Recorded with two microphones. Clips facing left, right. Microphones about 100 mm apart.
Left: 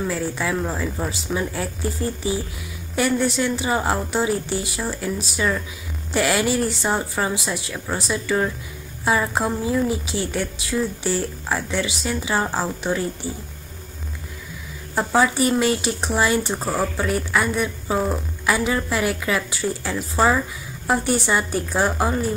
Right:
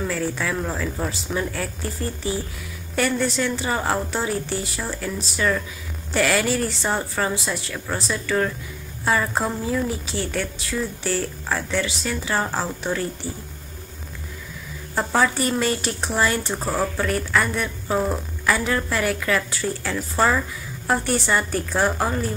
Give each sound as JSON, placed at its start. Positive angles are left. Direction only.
{"t": 0.0, "sound": "speech", "side_deg": 10}
{"t": 15.0, "sound": "speech", "side_deg": 10}